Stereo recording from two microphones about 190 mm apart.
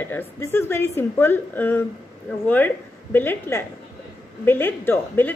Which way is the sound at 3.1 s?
10° left (ahead or behind).